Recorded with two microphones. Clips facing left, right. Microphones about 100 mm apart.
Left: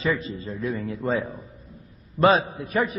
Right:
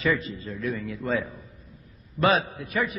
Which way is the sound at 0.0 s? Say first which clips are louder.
Even; 25° left (ahead or behind).